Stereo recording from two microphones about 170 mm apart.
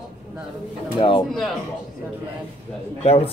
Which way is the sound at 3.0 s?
35° left (ahead or behind).